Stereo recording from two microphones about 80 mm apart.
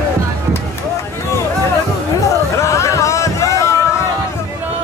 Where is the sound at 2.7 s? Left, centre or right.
Left.